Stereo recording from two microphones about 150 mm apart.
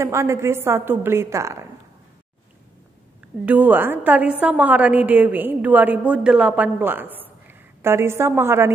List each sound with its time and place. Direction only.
0.0 s a woman's voice: 20° right (ahead or behind)
3.4 s a woman's voice: 10° right (ahead or behind)